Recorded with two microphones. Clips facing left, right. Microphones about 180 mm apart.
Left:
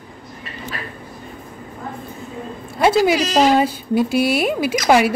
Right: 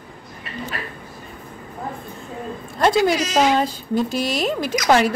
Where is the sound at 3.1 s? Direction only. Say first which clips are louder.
Left 3 dB; 35° left (ahead or behind).